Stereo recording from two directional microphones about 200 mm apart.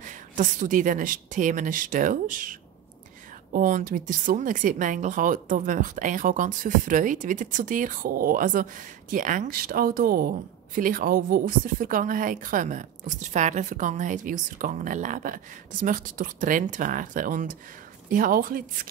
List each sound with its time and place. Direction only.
0.0 s a woman's voice: 40° right (ahead or behind)